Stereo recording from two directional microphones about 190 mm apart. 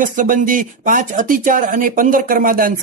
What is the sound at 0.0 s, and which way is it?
Speech, 45° right (ahead or behind).